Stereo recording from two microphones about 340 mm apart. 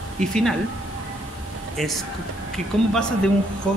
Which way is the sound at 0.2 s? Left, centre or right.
Centre.